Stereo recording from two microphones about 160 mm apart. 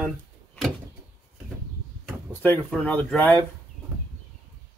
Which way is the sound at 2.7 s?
5° left (ahead or behind).